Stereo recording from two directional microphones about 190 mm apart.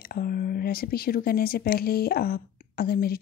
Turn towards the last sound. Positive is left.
turn(degrees=55)  # may be behind; listen again after turning